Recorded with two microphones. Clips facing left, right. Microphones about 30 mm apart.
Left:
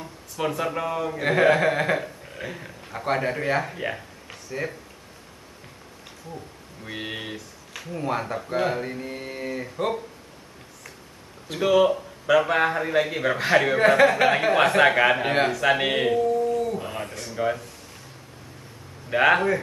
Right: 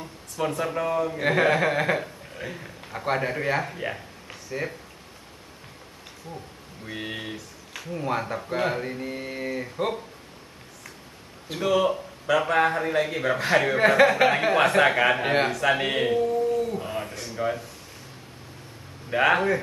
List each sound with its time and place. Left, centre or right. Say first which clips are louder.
0.4 s speech: even; centre
6.3 s speech: left 1 dB; right
6.8 s speech: left 1 dB; centre
11.6 s speech: left 3 dB; centre
13.7 s speech: right 1 dB; centre
16.2 s howl: left 1 dB; centre
19.0 s speech: left 2 dB; centre